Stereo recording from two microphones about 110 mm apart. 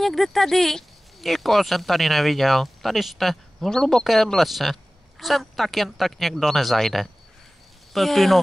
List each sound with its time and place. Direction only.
0.0 s speech: centre (ahead or behind)